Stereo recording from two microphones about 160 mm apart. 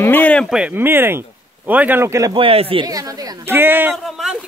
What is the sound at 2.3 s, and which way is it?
Speech, 35° right (ahead or behind).